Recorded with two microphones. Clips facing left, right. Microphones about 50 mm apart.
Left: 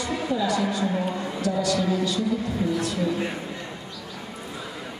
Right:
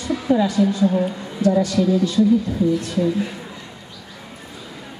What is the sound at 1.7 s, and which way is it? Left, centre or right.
A woman's voice, left.